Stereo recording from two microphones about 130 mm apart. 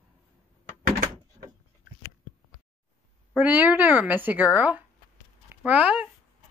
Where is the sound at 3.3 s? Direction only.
10° right (ahead or behind).